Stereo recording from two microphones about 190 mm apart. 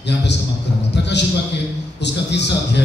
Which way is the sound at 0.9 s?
65° left (ahead or behind).